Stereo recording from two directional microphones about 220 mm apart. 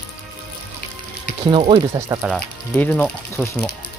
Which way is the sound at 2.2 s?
5° left (ahead or behind).